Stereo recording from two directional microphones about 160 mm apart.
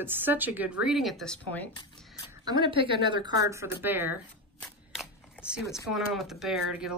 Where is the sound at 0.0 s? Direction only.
15° right (ahead or behind); by 1.7 s 10° left (ahead or behind).